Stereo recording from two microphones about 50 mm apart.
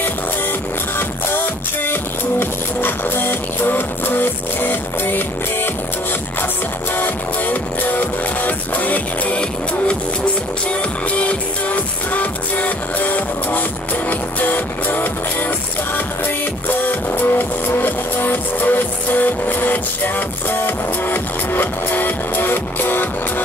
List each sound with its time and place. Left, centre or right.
0.9 s music: left
7.0 s music: left
11.1 s music: left
16.6 s music: left